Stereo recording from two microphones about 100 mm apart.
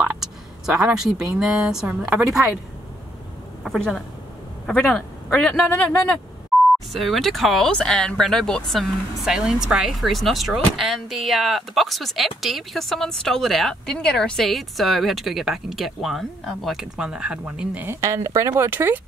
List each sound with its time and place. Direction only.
0.0 s speech: 5° right (ahead or behind)
3.6 s speech: centre (ahead or behind)
6.5 s beep: centre (ahead or behind)
6.9 s speech: centre (ahead or behind); by 17.9 s 15° right (ahead or behind)
18.0 s speech: 30° right (ahead or behind)